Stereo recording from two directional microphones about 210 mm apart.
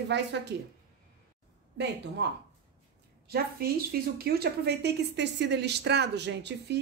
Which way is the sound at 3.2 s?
45° right (ahead or behind).